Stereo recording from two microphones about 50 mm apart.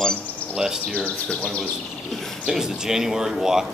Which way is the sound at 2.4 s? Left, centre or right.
Centre.